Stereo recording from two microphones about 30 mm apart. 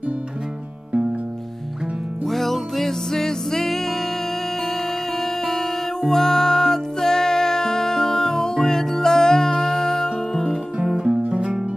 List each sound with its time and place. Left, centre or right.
2.2 s music: centre
3.1 s music: centre
11.1 s music: right